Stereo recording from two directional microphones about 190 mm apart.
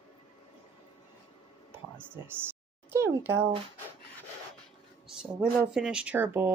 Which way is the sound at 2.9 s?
10° right (ahead or behind).